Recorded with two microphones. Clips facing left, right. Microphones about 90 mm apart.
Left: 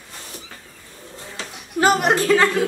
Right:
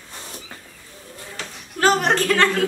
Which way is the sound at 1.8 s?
10° left (ahead or behind).